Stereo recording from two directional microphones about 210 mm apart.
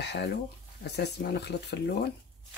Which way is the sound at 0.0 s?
50° left (ahead or behind).